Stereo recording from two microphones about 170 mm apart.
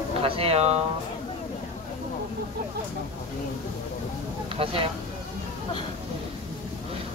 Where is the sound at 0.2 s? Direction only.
35° right (ahead or behind).